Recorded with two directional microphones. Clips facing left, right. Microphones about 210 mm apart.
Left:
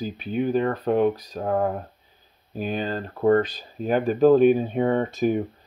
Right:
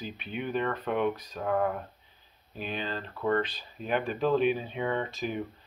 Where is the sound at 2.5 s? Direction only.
45° left (ahead or behind).